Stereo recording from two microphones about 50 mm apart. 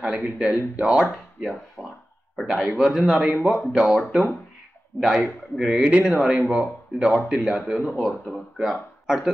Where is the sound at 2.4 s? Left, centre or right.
Centre.